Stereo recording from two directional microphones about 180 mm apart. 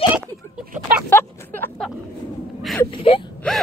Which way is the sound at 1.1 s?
10° left (ahead or behind).